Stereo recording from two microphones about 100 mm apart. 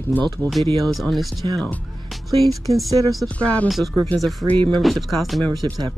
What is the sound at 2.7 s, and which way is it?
Speech, 70° right (ahead or behind).